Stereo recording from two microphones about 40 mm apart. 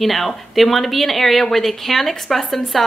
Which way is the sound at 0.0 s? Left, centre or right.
Centre.